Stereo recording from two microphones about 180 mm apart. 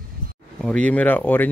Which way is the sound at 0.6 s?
5° left (ahead or behind).